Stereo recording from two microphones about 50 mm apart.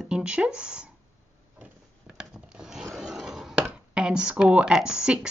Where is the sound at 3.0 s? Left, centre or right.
Centre.